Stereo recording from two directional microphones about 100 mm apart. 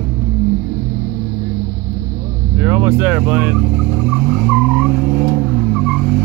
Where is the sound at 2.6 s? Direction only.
20° right (ahead or behind).